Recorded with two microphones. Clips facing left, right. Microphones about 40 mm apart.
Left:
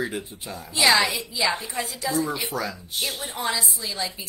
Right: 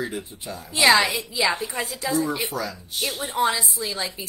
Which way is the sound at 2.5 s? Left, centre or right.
Left.